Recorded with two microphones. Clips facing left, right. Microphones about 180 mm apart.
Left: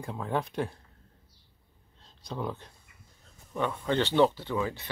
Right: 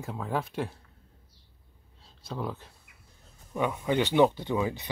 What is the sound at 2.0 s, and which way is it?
Speech, 5° right (ahead or behind).